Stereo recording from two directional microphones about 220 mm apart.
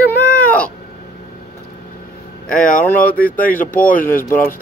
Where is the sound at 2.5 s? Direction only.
35° left (ahead or behind).